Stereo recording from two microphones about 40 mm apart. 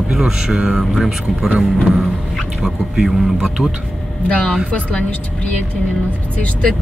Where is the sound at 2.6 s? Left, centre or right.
Centre.